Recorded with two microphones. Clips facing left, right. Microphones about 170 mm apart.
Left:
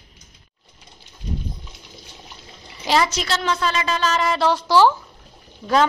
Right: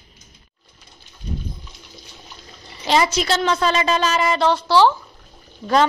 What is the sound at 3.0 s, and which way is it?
A woman's voice, 15° right (ahead or behind).